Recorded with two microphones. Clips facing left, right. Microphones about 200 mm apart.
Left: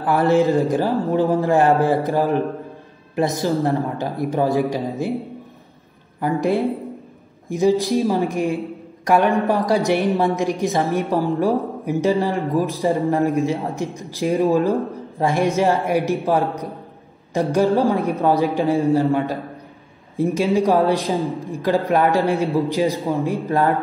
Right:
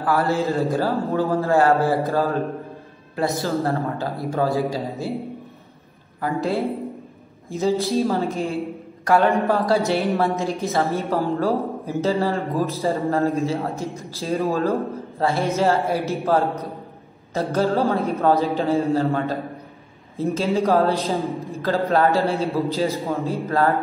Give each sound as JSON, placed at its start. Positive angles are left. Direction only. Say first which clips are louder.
{"t": 0.0, "sound": "a man's voice", "louder": "left 5 dB", "side_deg": 20}
{"t": 6.4, "sound": "a man's voice", "louder": "left 3 dB", "side_deg": 15}
{"t": 17.3, "sound": "a man's voice", "louder": "left 4 dB", "side_deg": 15}